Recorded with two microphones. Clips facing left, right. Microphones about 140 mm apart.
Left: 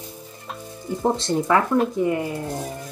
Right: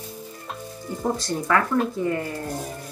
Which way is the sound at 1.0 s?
25° left (ahead or behind).